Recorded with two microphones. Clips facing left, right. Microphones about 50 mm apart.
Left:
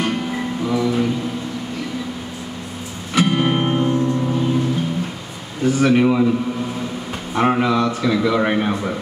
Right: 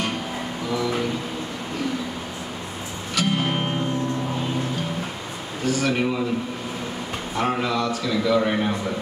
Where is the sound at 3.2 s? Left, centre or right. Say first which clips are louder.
Left 6 dB; left.